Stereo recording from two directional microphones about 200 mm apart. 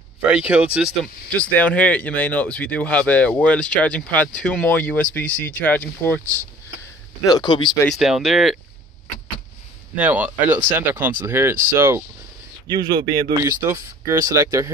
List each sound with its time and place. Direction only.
0.3 s speech: 5° right (ahead or behind)
7.2 s speech: 20° left (ahead or behind)
7.8 s speech: centre (ahead or behind)
9.9 s a man's voice: 10° right (ahead or behind)